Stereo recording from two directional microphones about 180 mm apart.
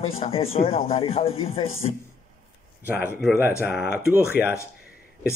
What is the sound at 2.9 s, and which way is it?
Speech, 10° right (ahead or behind).